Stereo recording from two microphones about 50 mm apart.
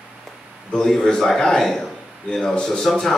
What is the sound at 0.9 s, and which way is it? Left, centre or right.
A man's voice, centre.